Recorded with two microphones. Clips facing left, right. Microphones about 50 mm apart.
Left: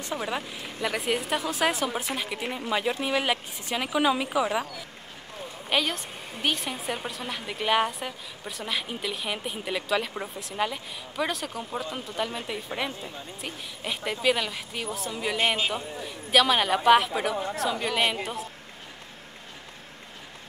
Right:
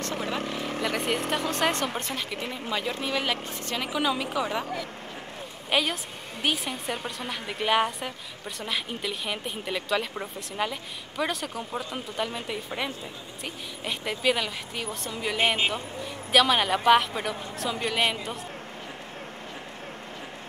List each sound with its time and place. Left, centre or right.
0.0 s speech: centre
0.4 s speech: right
0.8 s a woman's voice: centre
5.7 s a woman's voice: centre
15.3 s speech: centre
15.7 s a woman's voice: centre